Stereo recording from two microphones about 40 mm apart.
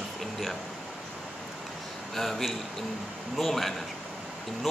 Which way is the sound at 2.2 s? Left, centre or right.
Centre.